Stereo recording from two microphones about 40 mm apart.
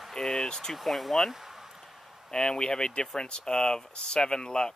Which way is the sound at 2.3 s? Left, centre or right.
Centre.